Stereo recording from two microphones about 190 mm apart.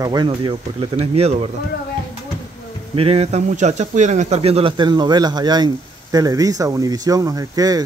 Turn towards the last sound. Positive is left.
turn(degrees=-20)  # may be behind; listen again after turning